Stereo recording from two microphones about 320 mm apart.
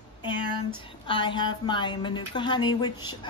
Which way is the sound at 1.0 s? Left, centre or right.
Centre.